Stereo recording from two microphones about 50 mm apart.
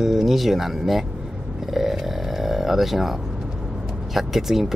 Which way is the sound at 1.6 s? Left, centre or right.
Centre.